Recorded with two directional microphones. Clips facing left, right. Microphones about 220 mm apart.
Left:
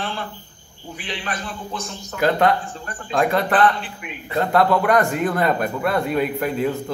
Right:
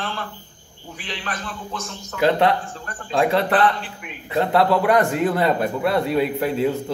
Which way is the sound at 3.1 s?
30° right (ahead or behind).